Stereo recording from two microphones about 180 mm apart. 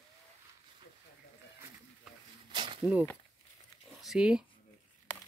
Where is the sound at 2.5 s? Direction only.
25° right (ahead or behind).